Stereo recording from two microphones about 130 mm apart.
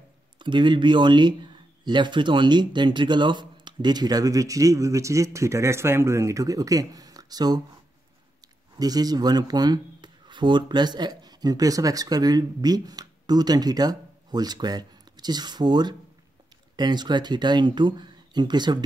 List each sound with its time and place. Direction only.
0.4 s speech: 35° right (ahead or behind)
8.7 s speech: 30° right (ahead or behind)